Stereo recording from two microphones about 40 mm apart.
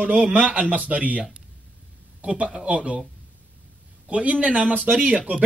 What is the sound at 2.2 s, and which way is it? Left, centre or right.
Speech, right.